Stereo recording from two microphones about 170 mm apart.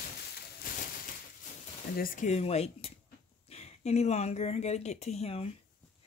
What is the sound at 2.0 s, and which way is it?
Speech, 55° left (ahead or behind).